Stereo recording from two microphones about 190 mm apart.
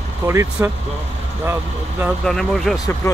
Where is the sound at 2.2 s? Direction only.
Centre (ahead or behind).